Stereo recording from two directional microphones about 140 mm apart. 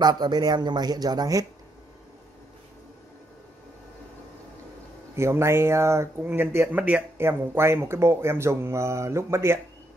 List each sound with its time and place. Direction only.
0.0 s a man's voice: 30° right (ahead or behind)
5.1 s speech: 20° right (ahead or behind)